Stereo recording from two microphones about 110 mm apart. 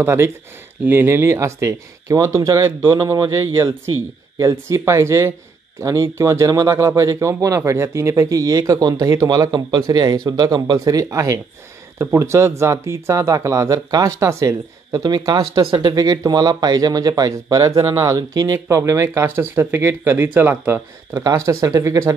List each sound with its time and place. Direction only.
0.0 s speech: 20° right (ahead or behind)
21.1 s speech: 30° right (ahead or behind)